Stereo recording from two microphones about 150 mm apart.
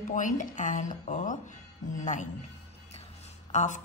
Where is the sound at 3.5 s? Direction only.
55° left (ahead or behind).